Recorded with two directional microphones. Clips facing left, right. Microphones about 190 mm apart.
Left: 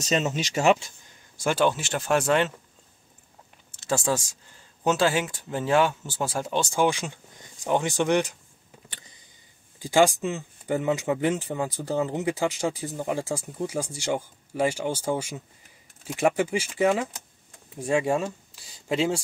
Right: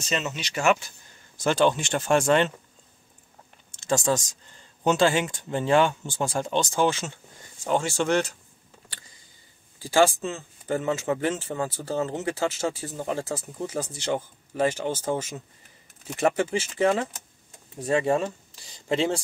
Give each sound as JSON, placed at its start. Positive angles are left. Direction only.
{"t": 0.0, "sound": "speech", "side_deg": 45}
{"t": 0.6, "sound": "speech", "side_deg": 25}
{"t": 1.3, "sound": "speech", "side_deg": 10}
{"t": 3.7, "sound": "speech", "side_deg": 5}
{"t": 9.8, "sound": "speech", "side_deg": 15}